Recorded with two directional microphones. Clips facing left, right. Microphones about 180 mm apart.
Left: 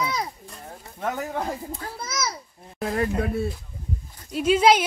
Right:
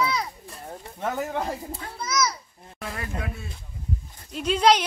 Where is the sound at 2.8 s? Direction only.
35° left (ahead or behind).